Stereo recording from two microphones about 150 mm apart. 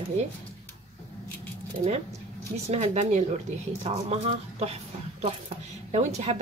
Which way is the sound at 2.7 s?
45° right (ahead or behind).